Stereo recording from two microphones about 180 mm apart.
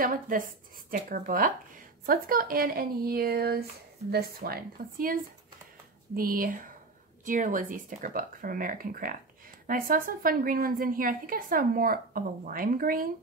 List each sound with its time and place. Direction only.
0.0 s speech: 50° right (ahead or behind)